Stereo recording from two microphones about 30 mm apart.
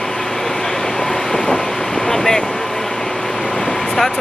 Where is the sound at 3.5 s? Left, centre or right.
Centre.